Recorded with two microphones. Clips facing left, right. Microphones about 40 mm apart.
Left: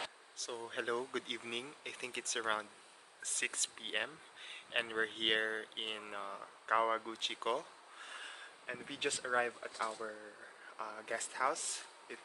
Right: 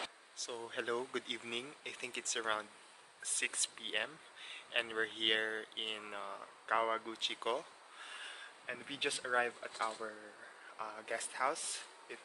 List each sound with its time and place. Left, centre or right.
0.4 s speech: centre
9.7 s speech: right
10.0 s speech: centre